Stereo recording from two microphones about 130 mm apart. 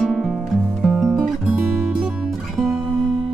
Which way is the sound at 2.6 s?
Centre (ahead or behind).